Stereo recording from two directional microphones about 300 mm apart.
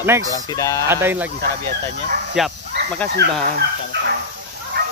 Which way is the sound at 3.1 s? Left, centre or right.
Right.